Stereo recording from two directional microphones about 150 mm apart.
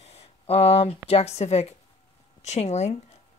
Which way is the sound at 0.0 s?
45° left (ahead or behind).